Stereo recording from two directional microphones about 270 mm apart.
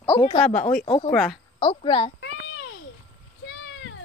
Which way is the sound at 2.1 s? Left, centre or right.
Left.